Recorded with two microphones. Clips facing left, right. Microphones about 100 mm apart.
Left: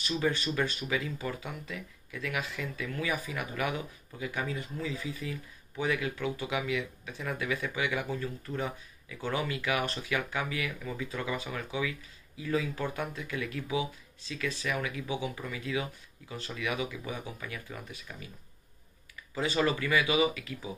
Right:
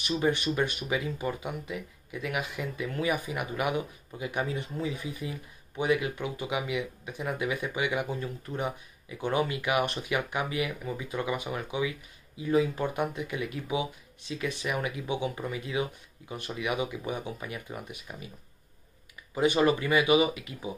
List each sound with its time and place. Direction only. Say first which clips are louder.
0.0 s speech: right 3 dB; 20° right (ahead or behind)
19.3 s speech: right 5 dB; 20° right (ahead or behind)